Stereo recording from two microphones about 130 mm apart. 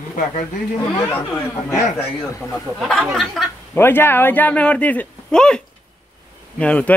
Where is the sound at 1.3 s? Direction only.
20° left (ahead or behind).